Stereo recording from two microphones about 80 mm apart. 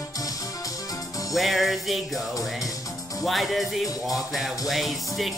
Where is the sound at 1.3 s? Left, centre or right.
Centre.